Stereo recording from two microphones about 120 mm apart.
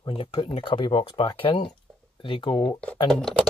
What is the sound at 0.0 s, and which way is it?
Speech, 45° left (ahead or behind).